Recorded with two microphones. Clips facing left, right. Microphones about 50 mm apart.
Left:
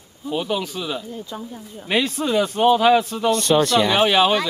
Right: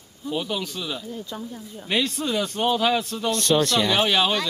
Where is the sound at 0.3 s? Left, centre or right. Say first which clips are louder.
Left 4 dB; centre.